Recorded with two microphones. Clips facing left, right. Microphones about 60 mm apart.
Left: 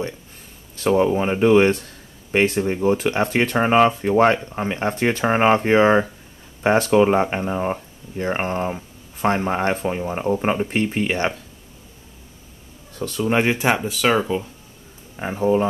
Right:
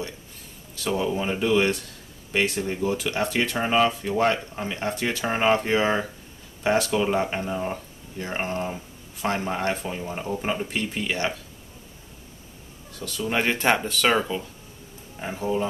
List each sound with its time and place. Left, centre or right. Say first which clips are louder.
0.7 s speech: left 8 dB; left
13.0 s speech: left 6 dB; left
13.4 s speech: left 1 dB; centre
15.1 s speech: left 7 dB; left